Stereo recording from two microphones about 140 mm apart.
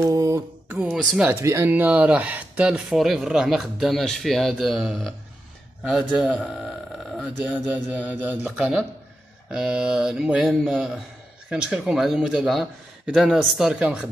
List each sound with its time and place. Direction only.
0.0 s mantra: 25° right (ahead or behind)
0.7 s speech: 10° right (ahead or behind)
0.9 s speech: centre (ahead or behind)
1.3 s speech: 20° right (ahead or behind)